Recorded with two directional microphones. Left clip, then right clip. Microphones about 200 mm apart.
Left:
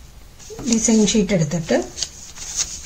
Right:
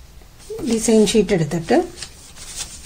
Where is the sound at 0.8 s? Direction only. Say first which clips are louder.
Right 4 dB; 45° right (ahead or behind).